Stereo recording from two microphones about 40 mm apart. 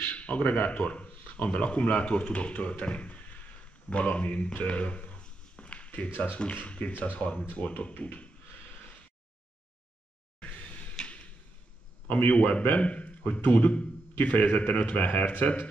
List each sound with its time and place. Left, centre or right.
0.0 s a sound: left
1.6 s a man's voice: left
3.9 s a sound: left
6.0 s speech: left
6.4 s a man's voice: left
6.9 s speech: left
7.5 s a man's voice: left
10.4 s a sound: left
12.1 s a man's voice: left